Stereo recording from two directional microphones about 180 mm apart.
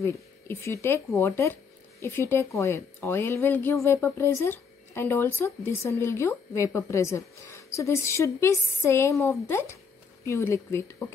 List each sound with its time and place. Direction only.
0.0 s speech: 15° left (ahead or behind)